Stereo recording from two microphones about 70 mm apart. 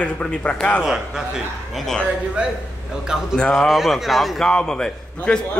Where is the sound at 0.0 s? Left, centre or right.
Centre.